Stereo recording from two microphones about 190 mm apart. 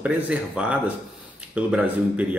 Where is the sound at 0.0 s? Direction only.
5° right (ahead or behind).